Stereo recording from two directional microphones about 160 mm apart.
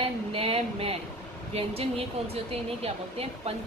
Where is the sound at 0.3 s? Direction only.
35° right (ahead or behind).